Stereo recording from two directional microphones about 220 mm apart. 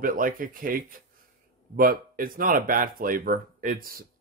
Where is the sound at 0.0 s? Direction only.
40° right (ahead or behind).